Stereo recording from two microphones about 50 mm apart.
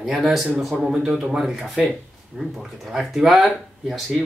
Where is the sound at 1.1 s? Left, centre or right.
Centre.